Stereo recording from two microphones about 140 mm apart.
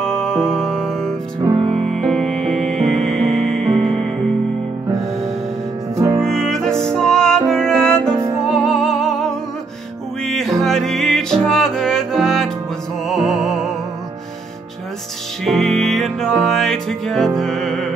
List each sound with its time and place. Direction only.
0.0 s music: 5° left (ahead or behind)
1.5 s music: 40° right (ahead or behind)
1.9 s music: centre (ahead or behind)
2.8 s music: 55° right (ahead or behind)
3.6 s music: centre (ahead or behind)
5.9 s music: 20° right (ahead or behind)
6.2 s music: 5° left (ahead or behind)
15.4 s music: centre (ahead or behind)